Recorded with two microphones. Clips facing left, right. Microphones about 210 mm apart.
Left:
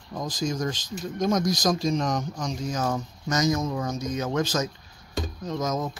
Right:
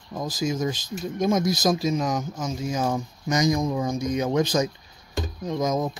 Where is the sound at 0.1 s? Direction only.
5° right (ahead or behind).